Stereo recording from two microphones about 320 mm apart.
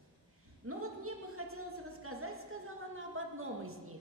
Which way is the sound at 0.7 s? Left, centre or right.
Right.